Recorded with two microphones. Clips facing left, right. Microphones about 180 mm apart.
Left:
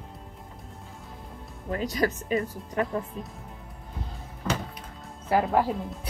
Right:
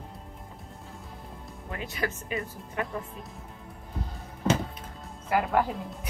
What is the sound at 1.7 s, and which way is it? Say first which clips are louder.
Speech: left 7 dB; 40° left (ahead or behind).